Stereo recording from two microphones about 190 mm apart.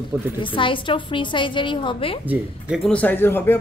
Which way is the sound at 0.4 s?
25° left (ahead or behind).